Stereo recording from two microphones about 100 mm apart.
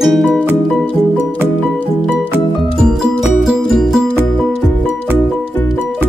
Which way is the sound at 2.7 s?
5° right (ahead or behind).